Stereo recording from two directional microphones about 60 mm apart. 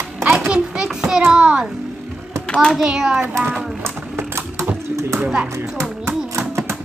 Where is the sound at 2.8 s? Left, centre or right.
Centre.